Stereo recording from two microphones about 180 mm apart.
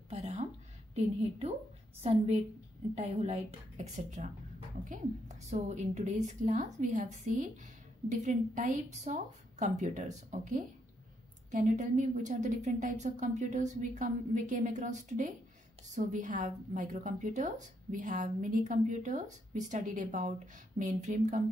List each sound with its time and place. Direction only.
0.1 s a sound: 35° right (ahead or behind)
0.9 s a woman's voice: 35° right (ahead or behind)
5.5 s a woman's voice: 40° right (ahead or behind)